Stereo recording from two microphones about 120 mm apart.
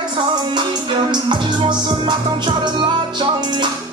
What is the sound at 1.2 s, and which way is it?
Music, 40° right (ahead or behind).